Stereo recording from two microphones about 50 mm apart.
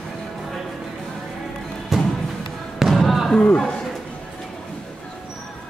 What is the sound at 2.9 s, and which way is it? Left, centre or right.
Basketball bounce, centre.